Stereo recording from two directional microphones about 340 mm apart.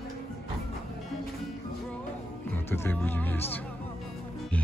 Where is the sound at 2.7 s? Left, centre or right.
Centre.